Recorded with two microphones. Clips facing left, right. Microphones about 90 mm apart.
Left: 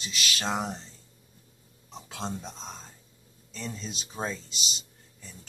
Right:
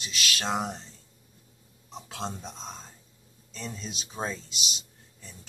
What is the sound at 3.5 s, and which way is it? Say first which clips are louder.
Speech: left 1 dB; 5° right (ahead or behind).